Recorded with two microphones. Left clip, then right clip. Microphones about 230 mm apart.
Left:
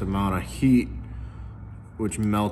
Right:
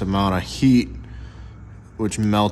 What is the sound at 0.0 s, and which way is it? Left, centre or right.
Speech, right.